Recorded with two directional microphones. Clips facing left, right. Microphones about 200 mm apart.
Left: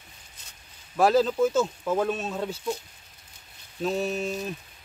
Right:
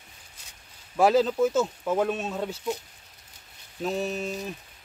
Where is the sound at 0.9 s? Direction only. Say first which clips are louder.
Even; 15° right (ahead or behind).